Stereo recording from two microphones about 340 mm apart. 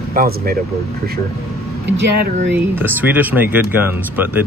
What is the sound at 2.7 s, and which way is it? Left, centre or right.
Speech, centre.